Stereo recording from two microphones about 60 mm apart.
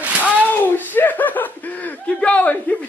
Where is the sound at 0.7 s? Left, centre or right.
Left.